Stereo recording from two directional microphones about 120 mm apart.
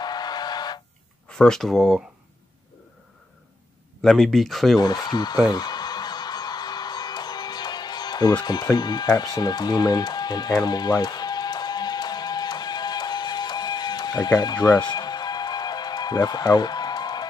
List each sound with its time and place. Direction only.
0.0 s a sound: 35° left (ahead or behind)
1.3 s speech: 5° left (ahead or behind)
4.0 s speech: 5° left (ahead or behind)
4.7 s speech: 35° left (ahead or behind)
5.5 s music: 35° left (ahead or behind)